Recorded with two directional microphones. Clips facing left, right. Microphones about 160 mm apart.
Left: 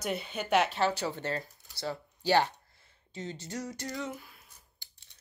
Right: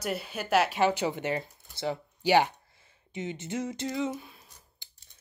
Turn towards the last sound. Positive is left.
turn(degrees=-25)  # may be behind; listen again after turning